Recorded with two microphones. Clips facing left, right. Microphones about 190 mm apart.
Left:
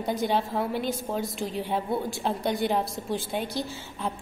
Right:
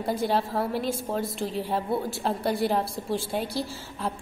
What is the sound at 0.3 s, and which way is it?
A woman's voice, centre (ahead or behind).